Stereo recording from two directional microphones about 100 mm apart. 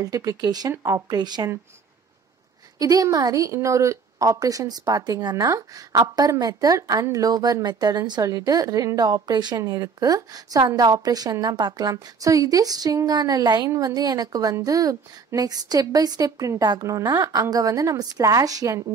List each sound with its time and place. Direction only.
0.0 s a woman's voice: 35° right (ahead or behind)
2.8 s a woman's voice: 35° right (ahead or behind)